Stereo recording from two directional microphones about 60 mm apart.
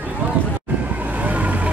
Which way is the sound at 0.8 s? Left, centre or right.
Right.